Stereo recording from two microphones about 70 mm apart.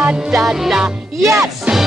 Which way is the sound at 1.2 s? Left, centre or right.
Right.